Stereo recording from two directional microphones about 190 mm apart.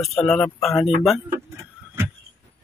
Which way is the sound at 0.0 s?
Centre (ahead or behind).